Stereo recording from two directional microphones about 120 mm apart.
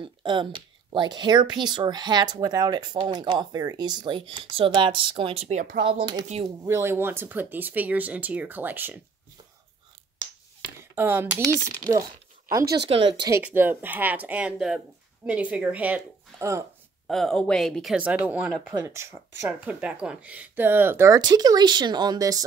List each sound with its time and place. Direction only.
0.0 s speech: 40° right (ahead or behind); by 5.7 s 65° right (ahead or behind)
5.9 s speech: 40° right (ahead or behind)
6.7 s speech: 20° right (ahead or behind)
10.8 s speech: 20° right (ahead or behind)
12.9 s speech: 40° right (ahead or behind)
13.4 s speech: 15° right (ahead or behind)
16.3 s speech: 25° right (ahead or behind)
17.1 s speech: 5° left (ahead or behind)
17.9 s speech: 10° right (ahead or behind)
19.7 s speech: 10° right (ahead or behind)
21.2 s speech: 30° right (ahead or behind)